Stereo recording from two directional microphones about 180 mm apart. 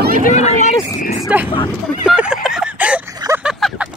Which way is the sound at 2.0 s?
5° right (ahead or behind).